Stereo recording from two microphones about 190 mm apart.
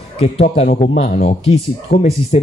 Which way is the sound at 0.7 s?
50° left (ahead or behind).